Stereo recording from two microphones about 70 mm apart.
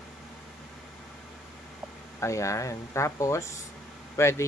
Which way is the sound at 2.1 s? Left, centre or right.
Left.